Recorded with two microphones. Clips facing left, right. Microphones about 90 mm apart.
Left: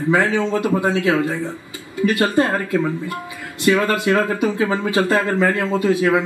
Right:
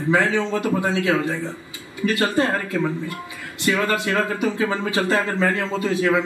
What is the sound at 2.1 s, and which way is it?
A man's voice, 20° left (ahead or behind).